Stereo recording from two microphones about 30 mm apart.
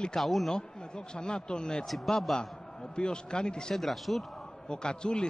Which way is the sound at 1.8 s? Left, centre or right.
Centre.